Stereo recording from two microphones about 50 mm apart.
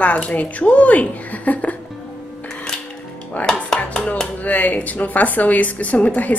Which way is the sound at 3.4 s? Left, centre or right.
Left.